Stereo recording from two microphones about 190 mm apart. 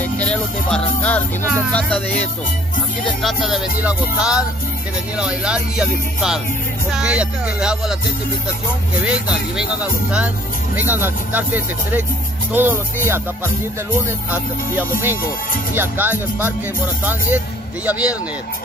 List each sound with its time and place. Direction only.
0.0 s music: 5° left (ahead or behind)
9.0 s music: 5° right (ahead or behind)
10.8 s speech: 10° right (ahead or behind)
14.3 s speech: 10° right (ahead or behind)
17.8 s speech: 5° right (ahead or behind)